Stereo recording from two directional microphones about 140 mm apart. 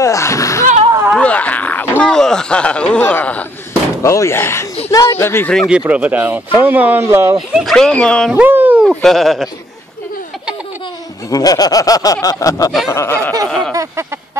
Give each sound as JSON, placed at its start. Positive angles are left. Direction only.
{"t": 0.0, "sound": "a sound", "side_deg": 20}
{"t": 1.1, "sound": "a sound", "side_deg": 10}
{"t": 4.0, "sound": "speech", "side_deg": 20}
{"t": 5.7, "sound": "speech", "side_deg": -10}
{"t": 7.5, "sound": "speech", "side_deg": 0}
{"t": 8.3, "sound": "speech", "side_deg": -10}
{"t": 8.8, "sound": "speech", "side_deg": 0}
{"t": 11.2, "sound": "speech", "side_deg": 25}
{"t": 13.7, "sound": "a sound", "side_deg": -25}